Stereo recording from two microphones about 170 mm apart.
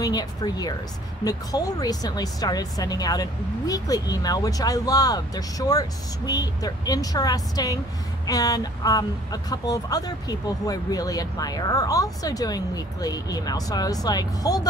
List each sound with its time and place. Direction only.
0.0 s speech: 20° left (ahead or behind)